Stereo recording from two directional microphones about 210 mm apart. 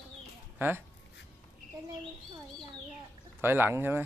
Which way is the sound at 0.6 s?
10° right (ahead or behind).